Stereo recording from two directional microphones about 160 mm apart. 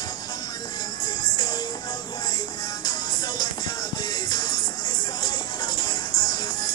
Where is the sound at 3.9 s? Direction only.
25° left (ahead or behind).